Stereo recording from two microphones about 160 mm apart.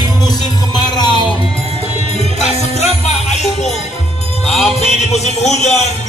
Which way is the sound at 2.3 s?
45° left (ahead or behind).